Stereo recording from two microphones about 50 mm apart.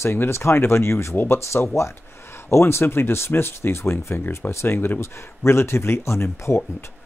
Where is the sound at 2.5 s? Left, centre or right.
Left.